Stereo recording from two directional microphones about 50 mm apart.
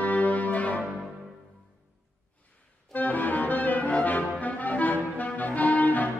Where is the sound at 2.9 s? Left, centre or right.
Left.